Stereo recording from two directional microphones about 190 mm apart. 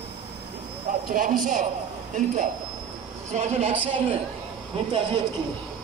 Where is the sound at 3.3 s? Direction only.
35° right (ahead or behind).